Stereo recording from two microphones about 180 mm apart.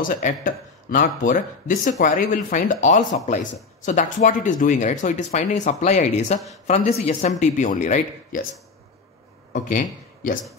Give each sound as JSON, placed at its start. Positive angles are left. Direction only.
{"t": 0.0, "sound": "speech", "side_deg": 50}
{"t": 9.5, "sound": "speech", "side_deg": 45}